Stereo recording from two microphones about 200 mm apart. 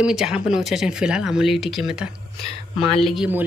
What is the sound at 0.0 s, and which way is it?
Speech, 5° right (ahead or behind).